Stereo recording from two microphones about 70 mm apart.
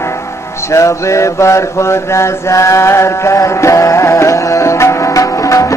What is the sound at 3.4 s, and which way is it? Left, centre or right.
Music, left.